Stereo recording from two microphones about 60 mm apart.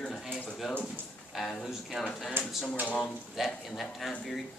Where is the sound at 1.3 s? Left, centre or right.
Centre.